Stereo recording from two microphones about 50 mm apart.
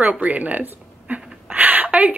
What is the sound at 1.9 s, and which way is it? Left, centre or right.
Speech, right.